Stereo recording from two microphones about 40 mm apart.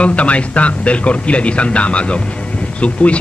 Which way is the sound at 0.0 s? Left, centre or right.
Left.